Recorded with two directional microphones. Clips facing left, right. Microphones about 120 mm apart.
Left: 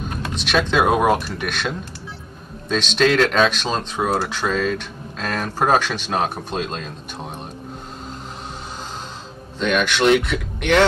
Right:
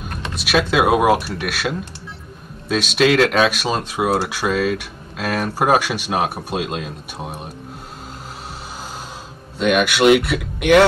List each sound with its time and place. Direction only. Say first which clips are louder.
0.0 s speech: left 2 dB; 5° right (ahead or behind)
9.6 s speech: right 3 dB; 10° right (ahead or behind)